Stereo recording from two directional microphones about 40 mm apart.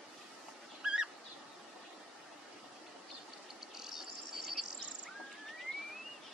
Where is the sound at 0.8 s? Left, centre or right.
Centre.